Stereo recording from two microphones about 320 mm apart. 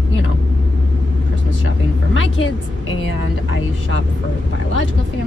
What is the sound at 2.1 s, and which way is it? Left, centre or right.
Speech, left.